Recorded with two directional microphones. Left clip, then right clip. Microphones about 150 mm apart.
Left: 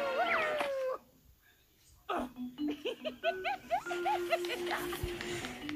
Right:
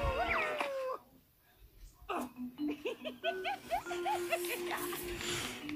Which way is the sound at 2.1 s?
35° left (ahead or behind).